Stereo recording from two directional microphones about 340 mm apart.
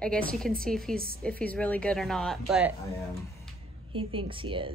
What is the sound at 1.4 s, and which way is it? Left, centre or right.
Speech, centre.